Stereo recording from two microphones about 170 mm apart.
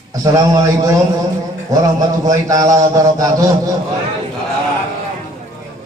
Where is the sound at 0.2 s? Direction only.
20° right (ahead or behind).